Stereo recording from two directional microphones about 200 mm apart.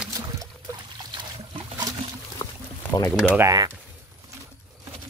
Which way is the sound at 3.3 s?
15° right (ahead or behind).